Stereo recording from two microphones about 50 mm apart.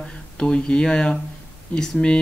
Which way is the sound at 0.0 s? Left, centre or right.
Centre.